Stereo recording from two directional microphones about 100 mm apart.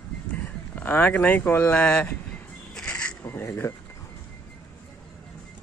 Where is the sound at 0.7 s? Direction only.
20° left (ahead or behind).